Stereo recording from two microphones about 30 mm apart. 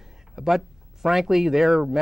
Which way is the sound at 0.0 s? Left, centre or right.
Centre.